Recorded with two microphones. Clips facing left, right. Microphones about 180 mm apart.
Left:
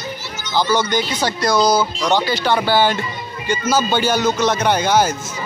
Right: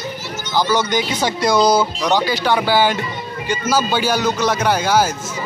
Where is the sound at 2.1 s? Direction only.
15° right (ahead or behind).